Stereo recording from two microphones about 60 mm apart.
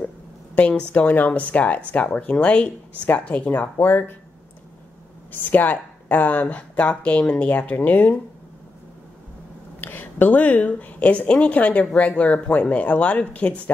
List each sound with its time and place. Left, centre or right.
0.6 s speech: left
5.3 s speech: left
9.8 s speech: left